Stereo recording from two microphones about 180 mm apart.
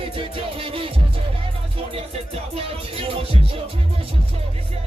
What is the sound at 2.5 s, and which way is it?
Music, 30° right (ahead or behind).